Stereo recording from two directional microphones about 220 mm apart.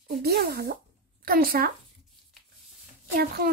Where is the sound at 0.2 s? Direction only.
45° right (ahead or behind).